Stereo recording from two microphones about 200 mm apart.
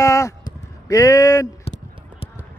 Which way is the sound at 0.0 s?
15° left (ahead or behind).